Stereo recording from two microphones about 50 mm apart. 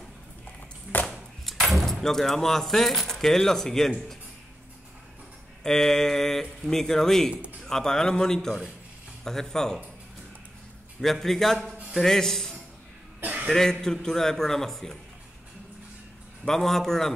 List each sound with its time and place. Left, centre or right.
1.4 s keys jangling: centre
2.0 s speech: centre
5.6 s speech: centre
11.0 s a man's voice: centre
13.2 s a sound: right
13.5 s speech: centre
16.4 s speech: centre